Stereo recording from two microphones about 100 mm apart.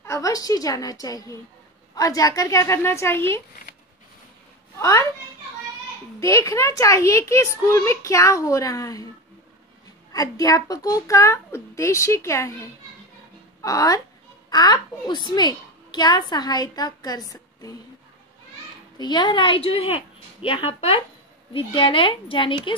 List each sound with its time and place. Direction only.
0.0 s a woman's voice: 30° left (ahead or behind)
4.7 s a child's voice: 30° left (ahead or behind)
6.1 s a woman's voice: 30° left (ahead or behind)
10.1 s a woman's voice: 35° left (ahead or behind)
13.6 s a woman's voice: 35° left (ahead or behind)
18.9 s a woman's voice: 50° left (ahead or behind)